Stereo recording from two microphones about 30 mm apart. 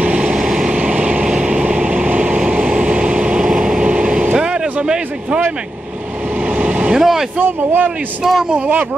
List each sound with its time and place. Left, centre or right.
0.0 s vehicle: right
0.3 s vehicle: centre
0.7 s vehicle: right
3.4 s vehicle: centre
3.8 s vehicle: right
4.8 s a sound: right
6.5 s vehicle: right
7.0 s speech: centre
7.3 s speech: right
8.2 s speech: centre
8.5 s speech: right